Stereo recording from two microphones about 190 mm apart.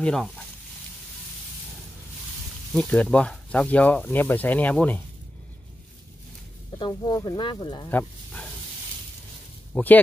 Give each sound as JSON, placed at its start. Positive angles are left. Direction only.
{"t": 0.0, "sound": "speech", "side_deg": 5}
{"t": 2.7, "sound": "speech", "side_deg": 5}
{"t": 6.8, "sound": "speech", "side_deg": 20}
{"t": 7.9, "sound": "speech", "side_deg": 5}
{"t": 9.8, "sound": "speech", "side_deg": 10}